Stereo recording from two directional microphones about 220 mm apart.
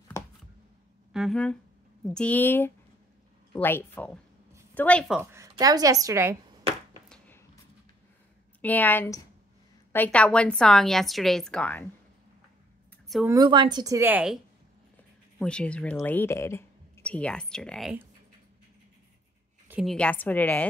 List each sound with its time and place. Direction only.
1.1 s a woman's voice: centre (ahead or behind)
5.2 s a woman's voice: 15° right (ahead or behind)
7.1 s a sound: 10° left (ahead or behind)
8.5 s a woman's voice: 10° left (ahead or behind)
13.3 s a woman's voice: 20° right (ahead or behind); by 17.9 s centre (ahead or behind)
19.7 s a woman's voice: centre (ahead or behind)